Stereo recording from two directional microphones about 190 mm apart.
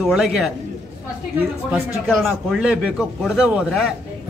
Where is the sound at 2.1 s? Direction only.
Centre (ahead or behind).